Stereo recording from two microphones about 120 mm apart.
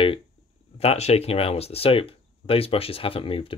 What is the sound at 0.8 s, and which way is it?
Speech, 60° left (ahead or behind).